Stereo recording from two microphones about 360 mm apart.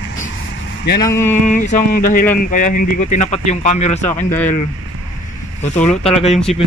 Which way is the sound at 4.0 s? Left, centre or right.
Centre.